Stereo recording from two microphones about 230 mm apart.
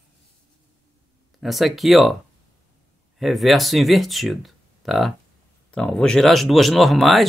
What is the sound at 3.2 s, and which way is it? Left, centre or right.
Speech, centre.